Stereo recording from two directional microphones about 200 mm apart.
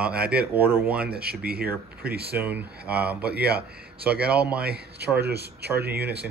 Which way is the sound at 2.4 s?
10° right (ahead or behind).